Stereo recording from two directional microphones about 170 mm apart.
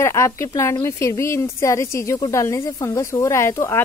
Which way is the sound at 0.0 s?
15° left (ahead or behind).